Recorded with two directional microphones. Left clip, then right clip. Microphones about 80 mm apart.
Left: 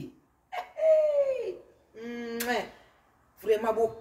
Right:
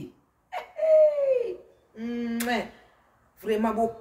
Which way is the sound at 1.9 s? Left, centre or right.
Right.